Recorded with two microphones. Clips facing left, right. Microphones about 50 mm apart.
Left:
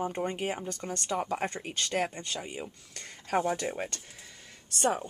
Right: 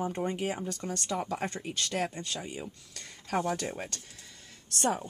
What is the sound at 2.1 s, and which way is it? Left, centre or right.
Speech, centre.